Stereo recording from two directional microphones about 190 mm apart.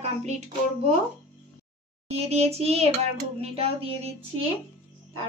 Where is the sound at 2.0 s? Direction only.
35° right (ahead or behind).